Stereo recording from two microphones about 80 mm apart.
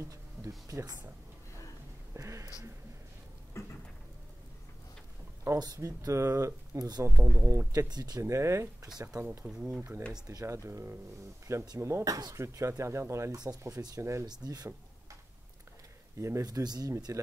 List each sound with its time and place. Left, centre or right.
0.1 s speech: right
2.1 s speech: right
3.6 s rain: left
5.5 s speech: right
7.9 s speech: right
8.2 s speech: right
9.4 s speech: centre
10.4 s speech: right
13.4 s speech: right
14.2 s speech: right
16.2 s speech: right
16.4 s speech: right